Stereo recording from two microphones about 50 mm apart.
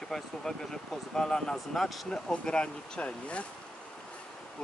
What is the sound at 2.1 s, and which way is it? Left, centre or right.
Speech, centre.